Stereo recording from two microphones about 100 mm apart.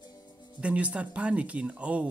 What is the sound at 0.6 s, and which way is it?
Speech, 10° right (ahead or behind).